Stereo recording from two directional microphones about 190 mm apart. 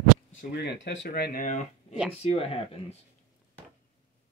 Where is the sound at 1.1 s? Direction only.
50° left (ahead or behind).